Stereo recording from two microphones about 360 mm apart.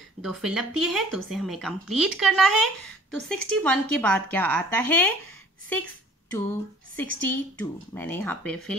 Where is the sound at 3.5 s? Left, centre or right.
Centre.